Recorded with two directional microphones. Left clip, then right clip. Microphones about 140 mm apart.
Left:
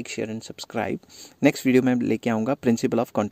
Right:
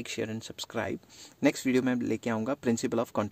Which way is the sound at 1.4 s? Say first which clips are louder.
Left 7 dB; 45° left (ahead or behind).